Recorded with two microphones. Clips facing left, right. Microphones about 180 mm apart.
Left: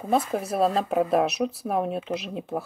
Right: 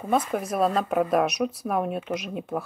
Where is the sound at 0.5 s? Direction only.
30° left (ahead or behind).